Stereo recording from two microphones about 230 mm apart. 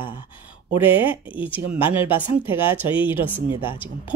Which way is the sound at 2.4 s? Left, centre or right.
Left.